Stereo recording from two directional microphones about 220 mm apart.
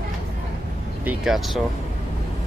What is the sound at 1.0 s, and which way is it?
Vehicle, 5° right (ahead or behind).